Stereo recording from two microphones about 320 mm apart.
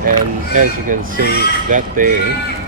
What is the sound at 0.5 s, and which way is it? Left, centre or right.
Speech, right.